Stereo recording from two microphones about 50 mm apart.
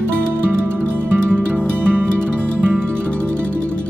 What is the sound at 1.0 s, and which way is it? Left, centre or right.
Music, right.